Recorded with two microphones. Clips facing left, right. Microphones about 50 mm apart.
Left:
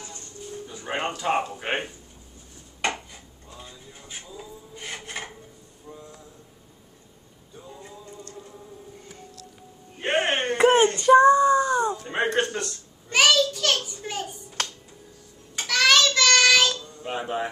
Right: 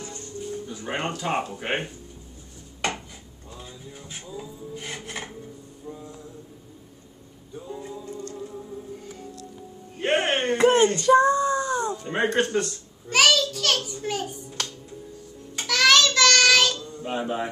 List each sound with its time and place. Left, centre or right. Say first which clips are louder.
0.7 s speech: left 3 dB; centre
3.5 s filing: right 3 dB; centre
5.9 s a sound: right 4 dB; centre
7.5 s music: right 7 dB; centre
9.9 s music: right 1 dB; centre
10.6 s child singing: left 1 dB; centre
12.0 s a child's voice: right 1 dB; centre
15.6 s child singing: right 1 dB; centre
17.0 s speech: right 1 dB; centre